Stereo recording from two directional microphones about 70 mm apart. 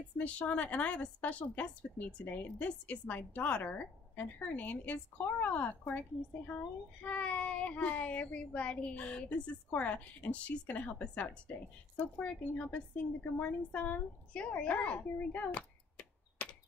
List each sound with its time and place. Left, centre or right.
0.2 s a woman's voice: centre